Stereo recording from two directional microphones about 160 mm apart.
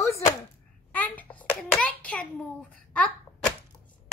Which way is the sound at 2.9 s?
10° left (ahead or behind).